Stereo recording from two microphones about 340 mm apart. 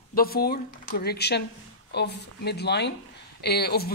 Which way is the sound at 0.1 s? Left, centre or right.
Left.